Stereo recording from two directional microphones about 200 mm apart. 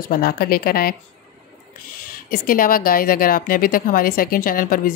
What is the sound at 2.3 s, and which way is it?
Speech, 45° left (ahead or behind).